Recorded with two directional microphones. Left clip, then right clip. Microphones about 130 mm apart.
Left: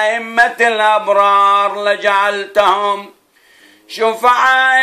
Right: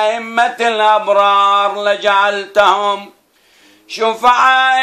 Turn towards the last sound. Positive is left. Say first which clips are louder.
# even
turn(degrees=10)  # may be behind; listen again after turning